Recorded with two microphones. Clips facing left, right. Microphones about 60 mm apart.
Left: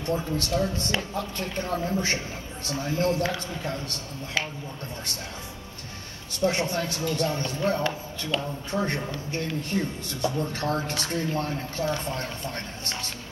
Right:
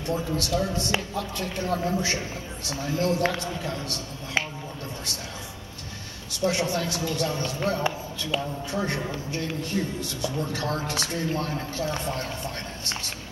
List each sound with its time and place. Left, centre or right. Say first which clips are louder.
0.0 s speech: even; left
6.4 s speech: even; left
8.3 s a man's voice: right 1 dB; centre
8.7 s speech: left 1 dB; left